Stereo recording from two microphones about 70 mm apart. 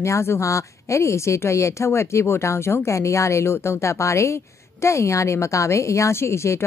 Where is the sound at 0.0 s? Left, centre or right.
Left.